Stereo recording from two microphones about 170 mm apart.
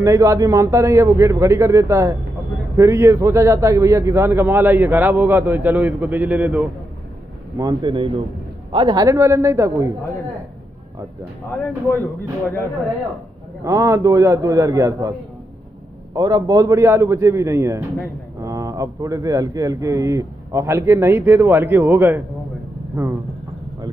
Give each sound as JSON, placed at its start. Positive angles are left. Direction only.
{"t": 0.0, "sound": "a man's voice", "side_deg": -20}
{"t": 7.5, "sound": "a man's voice", "side_deg": -25}
{"t": 13.7, "sound": "a man's voice", "side_deg": -20}